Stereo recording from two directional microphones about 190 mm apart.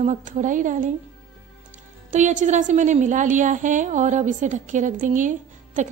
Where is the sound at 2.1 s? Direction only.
40° right (ahead or behind).